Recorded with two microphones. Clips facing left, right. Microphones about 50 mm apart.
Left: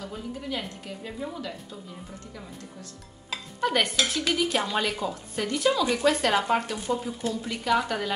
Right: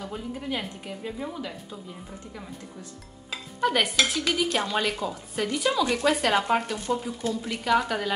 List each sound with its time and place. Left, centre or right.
0.0 s a woman's voice: centre
3.6 s speech: centre